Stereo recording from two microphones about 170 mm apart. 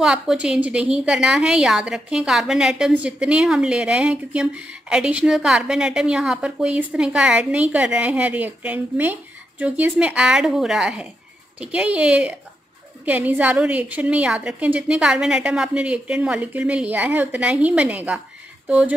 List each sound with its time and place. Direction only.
0.0 s a woman's voice: 5° right (ahead or behind)